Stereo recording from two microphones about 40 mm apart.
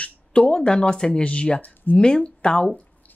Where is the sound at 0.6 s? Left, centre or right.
Centre.